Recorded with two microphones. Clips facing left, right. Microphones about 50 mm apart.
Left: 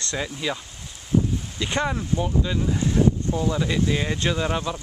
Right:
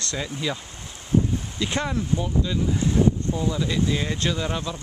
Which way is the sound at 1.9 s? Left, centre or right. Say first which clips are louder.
Left 1 dB; centre.